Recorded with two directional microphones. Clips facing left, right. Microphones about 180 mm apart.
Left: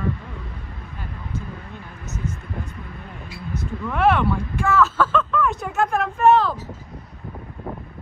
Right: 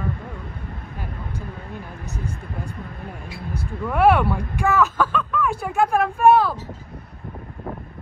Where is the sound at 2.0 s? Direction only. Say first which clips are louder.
Left 4 dB; 35° right (ahead or behind).